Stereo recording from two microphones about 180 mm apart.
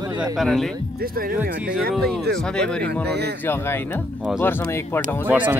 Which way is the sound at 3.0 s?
65° right (ahead or behind).